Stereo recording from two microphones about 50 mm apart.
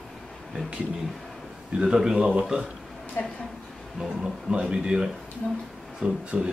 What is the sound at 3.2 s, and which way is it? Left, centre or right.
Speech, left.